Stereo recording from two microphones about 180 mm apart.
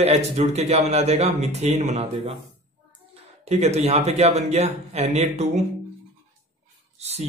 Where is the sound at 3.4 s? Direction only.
35° right (ahead or behind).